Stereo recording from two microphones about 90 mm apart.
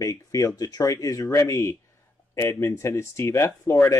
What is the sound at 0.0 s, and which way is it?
Speech, 40° left (ahead or behind).